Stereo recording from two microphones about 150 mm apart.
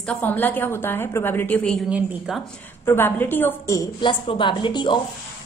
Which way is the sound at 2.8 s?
15° left (ahead or behind).